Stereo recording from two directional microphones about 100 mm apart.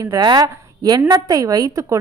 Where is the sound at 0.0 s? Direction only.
45° right (ahead or behind).